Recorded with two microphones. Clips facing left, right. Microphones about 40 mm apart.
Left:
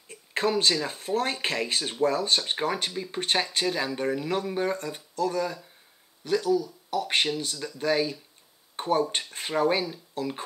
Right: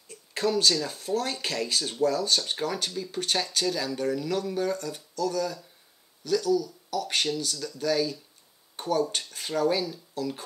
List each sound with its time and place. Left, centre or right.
0.1 s speech: left